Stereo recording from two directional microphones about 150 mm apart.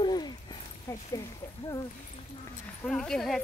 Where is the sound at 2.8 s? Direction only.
5° left (ahead or behind).